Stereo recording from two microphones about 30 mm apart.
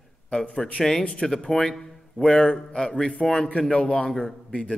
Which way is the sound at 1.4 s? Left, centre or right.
Centre.